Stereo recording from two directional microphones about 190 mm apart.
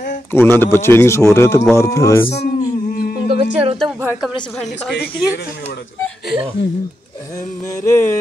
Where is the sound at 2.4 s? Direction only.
50° left (ahead or behind).